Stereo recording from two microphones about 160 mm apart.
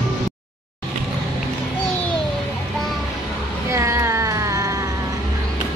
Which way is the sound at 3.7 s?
20° right (ahead or behind).